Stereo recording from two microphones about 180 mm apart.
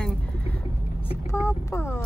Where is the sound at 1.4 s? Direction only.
15° left (ahead or behind).